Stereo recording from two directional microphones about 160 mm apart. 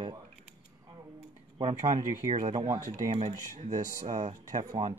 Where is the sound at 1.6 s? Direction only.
30° right (ahead or behind).